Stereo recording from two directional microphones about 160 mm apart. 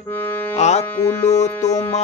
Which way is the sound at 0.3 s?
10° left (ahead or behind).